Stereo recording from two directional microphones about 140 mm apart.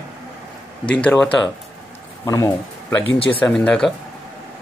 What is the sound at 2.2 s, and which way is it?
Speech, 20° left (ahead or behind).